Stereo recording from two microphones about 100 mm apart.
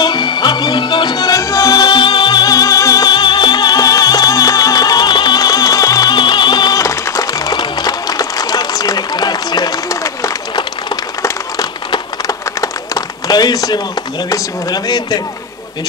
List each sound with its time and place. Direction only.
0.0 s music: 50° left (ahead or behind); by 10.3 s 35° left (ahead or behind)
12.3 s a sound: 35° left (ahead or behind)
14.3 s speech: 45° left (ahead or behind)